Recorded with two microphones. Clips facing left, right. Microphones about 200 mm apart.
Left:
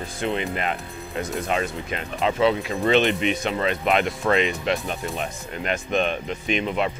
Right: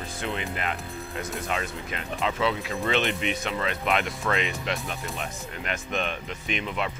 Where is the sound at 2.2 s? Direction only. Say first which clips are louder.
Left 6 dB; 30° left (ahead or behind).